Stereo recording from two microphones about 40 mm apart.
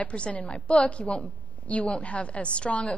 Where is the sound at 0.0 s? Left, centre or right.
Left.